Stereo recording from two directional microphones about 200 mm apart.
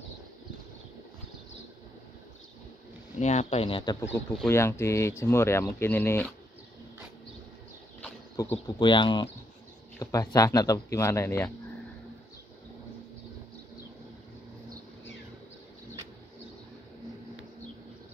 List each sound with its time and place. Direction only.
3.2 s speech: 35° left (ahead or behind); by 6.3 s 10° left (ahead or behind)
8.4 s speech: 20° left (ahead or behind)